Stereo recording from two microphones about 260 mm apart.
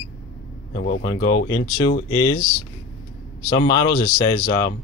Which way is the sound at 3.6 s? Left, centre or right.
Centre.